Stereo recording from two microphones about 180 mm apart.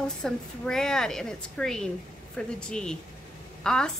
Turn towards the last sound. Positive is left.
turn(degrees=5)  # may be behind; listen again after turning